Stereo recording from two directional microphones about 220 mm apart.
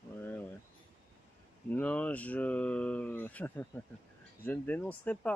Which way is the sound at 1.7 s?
5° left (ahead or behind).